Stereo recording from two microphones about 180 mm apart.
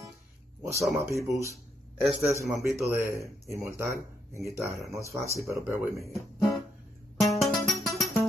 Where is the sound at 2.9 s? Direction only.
15° right (ahead or behind).